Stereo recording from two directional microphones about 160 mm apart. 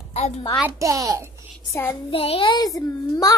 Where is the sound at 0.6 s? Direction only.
15° right (ahead or behind).